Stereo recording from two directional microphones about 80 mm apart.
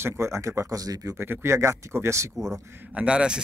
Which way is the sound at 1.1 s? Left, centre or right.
Right.